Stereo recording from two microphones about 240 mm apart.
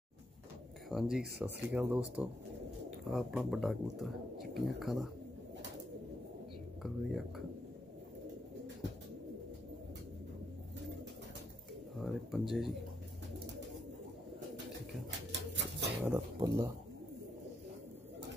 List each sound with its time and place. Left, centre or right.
0.8 s speech: centre
6.8 s speech: centre
12.0 s speech: centre
15.0 s a sound: right
16.1 s speech: centre